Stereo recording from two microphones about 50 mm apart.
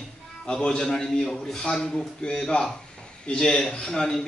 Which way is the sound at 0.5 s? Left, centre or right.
Centre.